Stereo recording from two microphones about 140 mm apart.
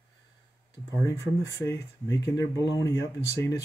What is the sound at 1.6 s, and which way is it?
Speech, 20° left (ahead or behind).